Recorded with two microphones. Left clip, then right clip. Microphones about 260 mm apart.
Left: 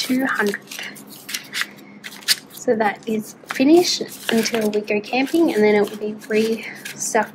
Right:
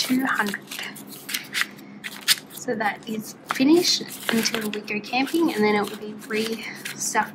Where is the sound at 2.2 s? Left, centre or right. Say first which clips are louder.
Left 4 dB; centre.